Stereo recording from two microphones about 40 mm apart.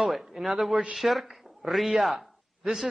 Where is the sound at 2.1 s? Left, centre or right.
Centre.